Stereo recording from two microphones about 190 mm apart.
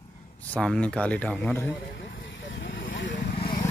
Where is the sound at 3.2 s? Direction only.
55° left (ahead or behind).